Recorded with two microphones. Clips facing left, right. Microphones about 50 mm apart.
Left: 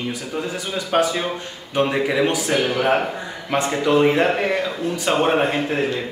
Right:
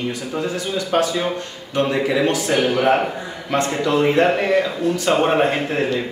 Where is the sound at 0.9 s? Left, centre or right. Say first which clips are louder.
Even; left.